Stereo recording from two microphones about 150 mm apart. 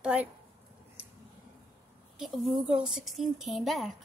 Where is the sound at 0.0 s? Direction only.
10° right (ahead or behind).